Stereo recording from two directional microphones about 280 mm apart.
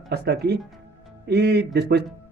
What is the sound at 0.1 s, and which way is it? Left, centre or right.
A man's voice, right.